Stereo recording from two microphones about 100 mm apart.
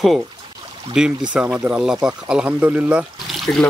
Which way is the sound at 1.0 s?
10° right (ahead or behind).